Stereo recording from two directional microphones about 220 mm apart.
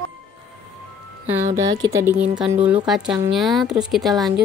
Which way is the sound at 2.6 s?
5° right (ahead or behind).